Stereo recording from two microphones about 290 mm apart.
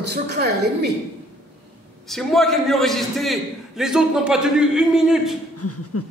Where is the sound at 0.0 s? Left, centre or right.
Right.